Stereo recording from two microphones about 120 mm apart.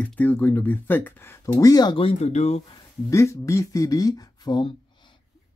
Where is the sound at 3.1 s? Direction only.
25° left (ahead or behind).